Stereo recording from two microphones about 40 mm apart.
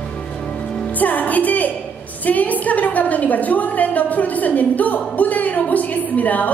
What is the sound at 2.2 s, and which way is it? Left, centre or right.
A woman's voice, left.